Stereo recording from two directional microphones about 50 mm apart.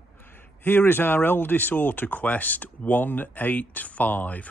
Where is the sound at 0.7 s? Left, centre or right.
Left.